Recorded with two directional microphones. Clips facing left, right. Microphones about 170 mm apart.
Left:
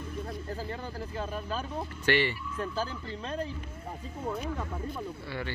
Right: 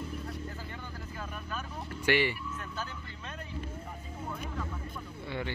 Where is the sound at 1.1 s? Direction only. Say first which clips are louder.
Left 6 dB; 30° left (ahead or behind).